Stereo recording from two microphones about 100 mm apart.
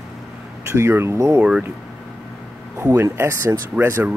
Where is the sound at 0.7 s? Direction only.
25° right (ahead or behind).